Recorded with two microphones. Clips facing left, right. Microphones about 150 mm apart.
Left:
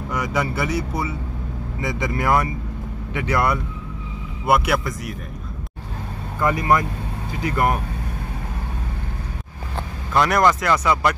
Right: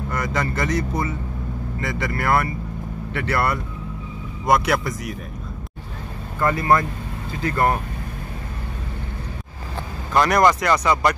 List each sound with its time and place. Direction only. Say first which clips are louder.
0.1 s speech: left 2 dB; 10° left (ahead or behind)
6.4 s speech: even; 15° left (ahead or behind)
10.1 s speech: right 1 dB; centre (ahead or behind)